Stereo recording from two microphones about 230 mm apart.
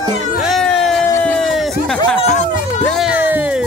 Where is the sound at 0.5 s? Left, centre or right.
Centre.